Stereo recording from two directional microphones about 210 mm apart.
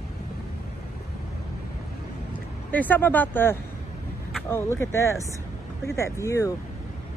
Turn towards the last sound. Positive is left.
turn(degrees=15)  # may be behind; listen again after turning